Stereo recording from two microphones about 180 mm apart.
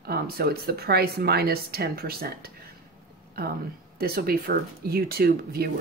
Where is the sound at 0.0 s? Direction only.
60° right (ahead or behind).